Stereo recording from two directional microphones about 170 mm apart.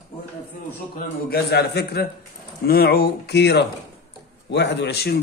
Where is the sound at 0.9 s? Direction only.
70° left (ahead or behind).